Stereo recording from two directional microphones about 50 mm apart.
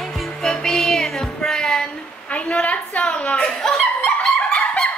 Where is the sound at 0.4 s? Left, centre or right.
Centre.